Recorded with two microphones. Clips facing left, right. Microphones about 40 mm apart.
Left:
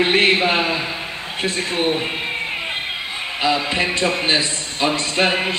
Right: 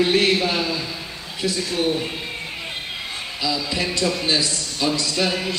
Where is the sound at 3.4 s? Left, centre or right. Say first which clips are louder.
Left 5 dB; left.